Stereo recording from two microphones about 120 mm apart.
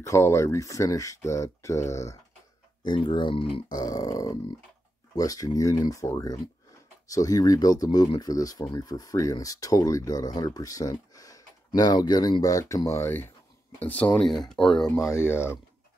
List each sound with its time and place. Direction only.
0.0 s speech: 25° left (ahead or behind)
2.8 s speech: 40° left (ahead or behind)
3.7 s speech: 30° left (ahead or behind); by 15.0 s 5° left (ahead or behind)
15.0 s speech: 20° left (ahead or behind)